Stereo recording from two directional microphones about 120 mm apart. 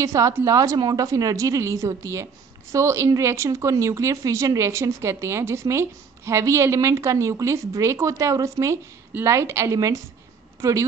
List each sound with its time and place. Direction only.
0.0 s a woman's voice: 30° right (ahead or behind)